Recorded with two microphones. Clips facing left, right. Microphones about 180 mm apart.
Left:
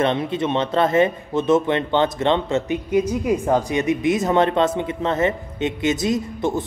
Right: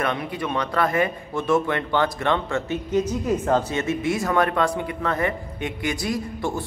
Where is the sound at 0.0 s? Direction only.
25° left (ahead or behind).